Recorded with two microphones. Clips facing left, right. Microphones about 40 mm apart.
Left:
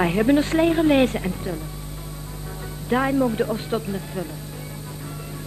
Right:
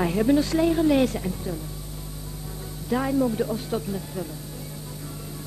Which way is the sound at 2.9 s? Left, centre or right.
Left.